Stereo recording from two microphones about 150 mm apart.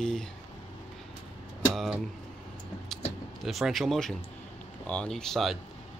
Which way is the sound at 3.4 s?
Centre (ahead or behind).